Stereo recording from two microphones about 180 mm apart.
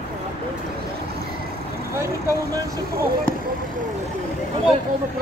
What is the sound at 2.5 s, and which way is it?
Speech, 15° right (ahead or behind).